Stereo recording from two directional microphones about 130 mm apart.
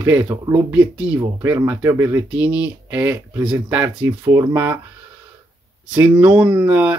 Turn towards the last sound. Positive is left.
turn(degrees=-10)  # may be behind; listen again after turning